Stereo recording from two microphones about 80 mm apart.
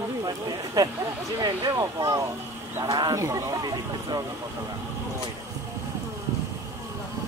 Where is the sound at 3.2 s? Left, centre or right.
Right.